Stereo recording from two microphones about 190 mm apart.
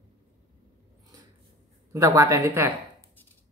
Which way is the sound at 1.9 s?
15° right (ahead or behind).